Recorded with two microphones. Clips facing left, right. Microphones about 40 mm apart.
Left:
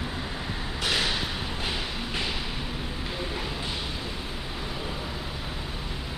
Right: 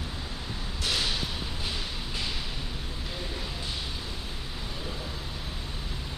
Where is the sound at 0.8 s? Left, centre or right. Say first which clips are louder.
Left 3 dB; left.